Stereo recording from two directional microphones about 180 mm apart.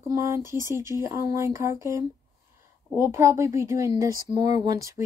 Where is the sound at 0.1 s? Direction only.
15° right (ahead or behind).